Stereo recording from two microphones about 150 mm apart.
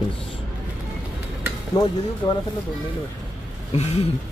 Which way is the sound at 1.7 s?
25° left (ahead or behind).